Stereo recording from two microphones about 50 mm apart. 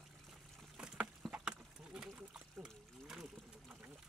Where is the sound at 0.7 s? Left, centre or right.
Right.